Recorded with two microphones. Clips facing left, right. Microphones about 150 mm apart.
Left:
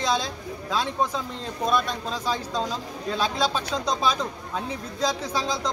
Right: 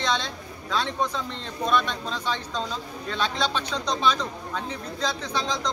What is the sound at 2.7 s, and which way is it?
Speech, 10° left (ahead or behind).